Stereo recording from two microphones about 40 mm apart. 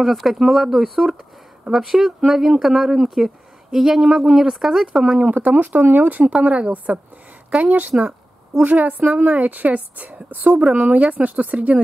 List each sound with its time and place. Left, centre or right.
0.0 s speech: centre
5.2 s speech: right
6.3 s speech: right
8.6 s a woman's voice: right